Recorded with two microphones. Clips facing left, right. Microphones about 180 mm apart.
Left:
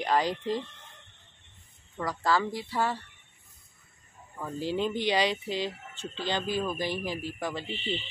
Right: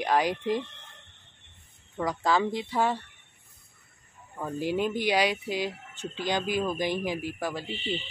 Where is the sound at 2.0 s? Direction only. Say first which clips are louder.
Right 2 dB; 20° right (ahead or behind).